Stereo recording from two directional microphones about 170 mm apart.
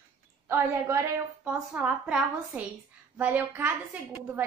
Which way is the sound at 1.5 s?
5° right (ahead or behind).